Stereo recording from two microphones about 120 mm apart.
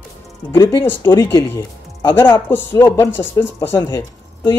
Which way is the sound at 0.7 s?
20° left (ahead or behind).